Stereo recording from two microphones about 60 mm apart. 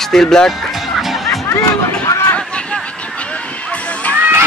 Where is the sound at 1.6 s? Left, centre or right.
Left.